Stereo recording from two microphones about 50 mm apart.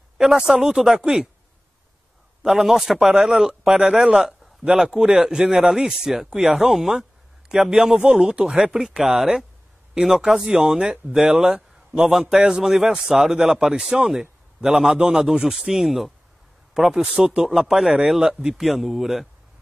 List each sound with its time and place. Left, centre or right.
0.4 s a man's voice: centre
2.4 s a man's voice: centre
8.7 s a man's voice: centre